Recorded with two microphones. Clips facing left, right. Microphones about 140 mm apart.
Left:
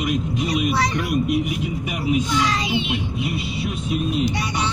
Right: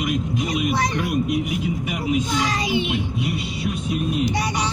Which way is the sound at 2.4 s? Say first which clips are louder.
Even; 45° right (ahead or behind).